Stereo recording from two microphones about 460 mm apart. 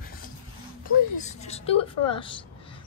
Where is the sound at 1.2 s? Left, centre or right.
Centre.